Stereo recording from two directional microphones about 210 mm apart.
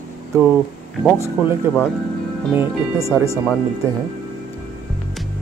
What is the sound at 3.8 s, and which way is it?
Speech, 10° right (ahead or behind).